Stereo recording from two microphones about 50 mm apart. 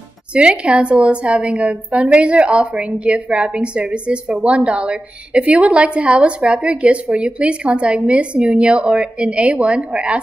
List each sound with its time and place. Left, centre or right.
0.3 s a woman's voice: right